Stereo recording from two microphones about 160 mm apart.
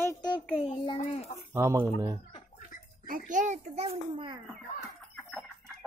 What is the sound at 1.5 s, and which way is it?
Speech, 15° right (ahead or behind).